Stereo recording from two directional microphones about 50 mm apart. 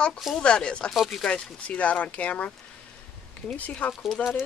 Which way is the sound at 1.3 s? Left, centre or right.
Left.